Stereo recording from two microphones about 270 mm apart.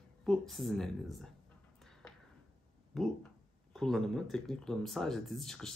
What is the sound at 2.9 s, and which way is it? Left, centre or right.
Speech, centre.